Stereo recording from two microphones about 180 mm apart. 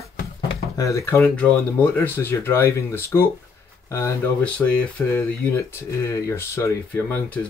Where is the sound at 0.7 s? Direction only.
15° left (ahead or behind).